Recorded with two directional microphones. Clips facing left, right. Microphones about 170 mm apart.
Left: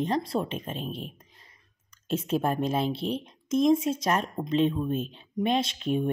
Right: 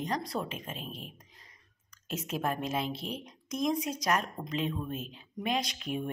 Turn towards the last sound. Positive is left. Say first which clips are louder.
# left 8 dB
turn(degrees=30)  # may be behind; listen again after turning